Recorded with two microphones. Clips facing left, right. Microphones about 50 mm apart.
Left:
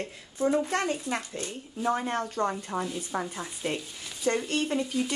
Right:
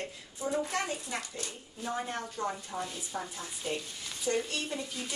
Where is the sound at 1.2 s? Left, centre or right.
Left.